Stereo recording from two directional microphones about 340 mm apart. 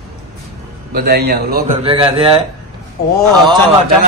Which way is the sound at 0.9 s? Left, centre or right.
Right.